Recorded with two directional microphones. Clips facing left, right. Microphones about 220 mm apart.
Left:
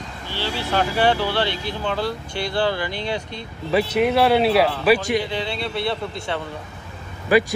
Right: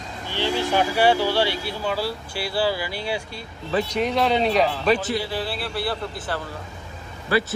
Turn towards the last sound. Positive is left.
turn(degrees=15)  # may be behind; listen again after turning